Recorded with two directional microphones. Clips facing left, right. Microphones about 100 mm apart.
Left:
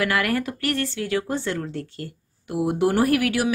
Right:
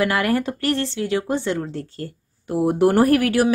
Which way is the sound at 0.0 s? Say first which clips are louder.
Right 3 dB; 25° right (ahead or behind).